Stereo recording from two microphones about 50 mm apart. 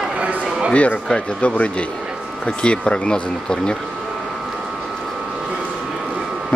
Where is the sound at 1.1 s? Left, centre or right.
Left.